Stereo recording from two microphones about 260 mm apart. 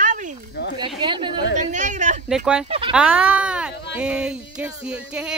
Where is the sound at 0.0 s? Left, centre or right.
Right.